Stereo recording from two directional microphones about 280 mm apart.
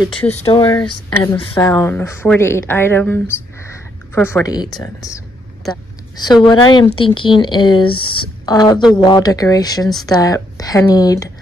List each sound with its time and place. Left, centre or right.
0.0 s speech: centre